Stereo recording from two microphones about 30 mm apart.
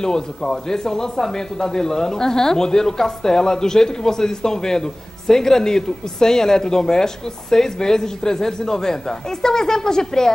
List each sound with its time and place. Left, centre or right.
0.0 s speech: centre